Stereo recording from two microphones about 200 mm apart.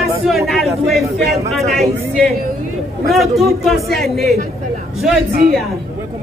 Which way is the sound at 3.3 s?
Centre (ahead or behind).